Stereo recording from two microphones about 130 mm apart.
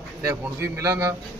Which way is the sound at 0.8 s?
25° right (ahead or behind).